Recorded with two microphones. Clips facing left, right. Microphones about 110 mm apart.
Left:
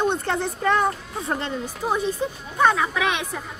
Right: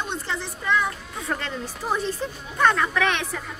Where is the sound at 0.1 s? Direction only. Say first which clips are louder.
Left 6 dB; 55° left (ahead or behind).